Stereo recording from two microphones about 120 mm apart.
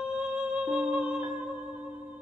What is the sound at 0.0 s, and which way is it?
Music, 10° right (ahead or behind).